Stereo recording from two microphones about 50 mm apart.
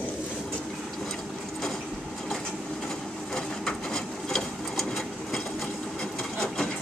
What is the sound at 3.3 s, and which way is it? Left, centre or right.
Sewing machine, centre.